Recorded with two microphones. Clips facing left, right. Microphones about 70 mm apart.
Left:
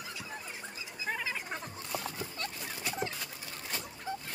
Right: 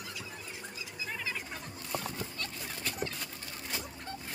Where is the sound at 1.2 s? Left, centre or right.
Left.